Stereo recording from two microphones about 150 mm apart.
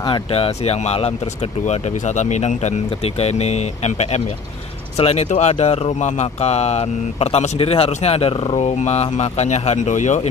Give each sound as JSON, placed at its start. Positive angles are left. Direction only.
{"t": 0.0, "sound": "speech", "side_deg": 35}